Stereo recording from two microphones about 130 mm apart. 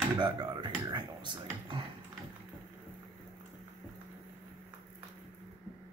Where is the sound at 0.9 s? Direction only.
35° right (ahead or behind).